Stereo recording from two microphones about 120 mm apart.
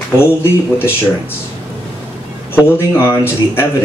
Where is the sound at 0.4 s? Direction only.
20° left (ahead or behind).